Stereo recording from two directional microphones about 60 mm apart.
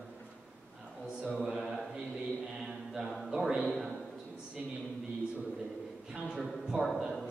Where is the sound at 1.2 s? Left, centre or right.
Centre.